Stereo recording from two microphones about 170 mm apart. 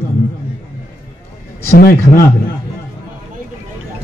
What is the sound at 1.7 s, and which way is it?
Speech, 60° left (ahead or behind).